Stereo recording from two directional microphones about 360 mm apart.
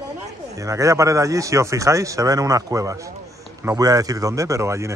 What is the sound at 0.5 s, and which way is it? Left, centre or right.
Speech, centre.